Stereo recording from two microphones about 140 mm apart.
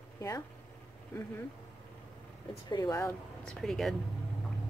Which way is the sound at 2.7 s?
20° left (ahead or behind).